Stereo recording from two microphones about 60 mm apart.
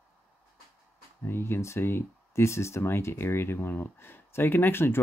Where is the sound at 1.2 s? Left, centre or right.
Left.